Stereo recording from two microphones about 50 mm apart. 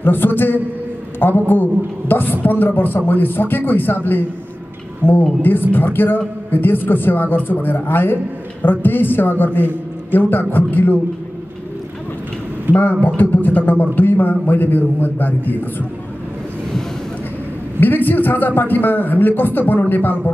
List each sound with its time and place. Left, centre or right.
0.0 s a man's voice: left
12.7 s speech: right
13.2 s a man's voice: left
17.7 s a man's voice: left